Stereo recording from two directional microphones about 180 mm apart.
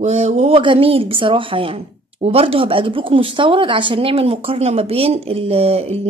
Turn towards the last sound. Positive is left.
turn(degrees=-35)  # may be behind; listen again after turning